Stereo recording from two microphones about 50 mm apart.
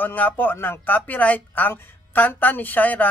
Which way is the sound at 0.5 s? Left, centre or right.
Left.